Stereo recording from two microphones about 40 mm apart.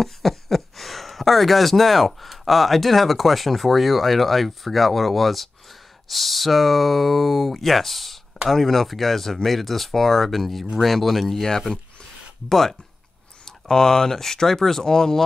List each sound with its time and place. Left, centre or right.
0.0 s speech: centre
11.7 s a sound: centre
13.5 s speech: centre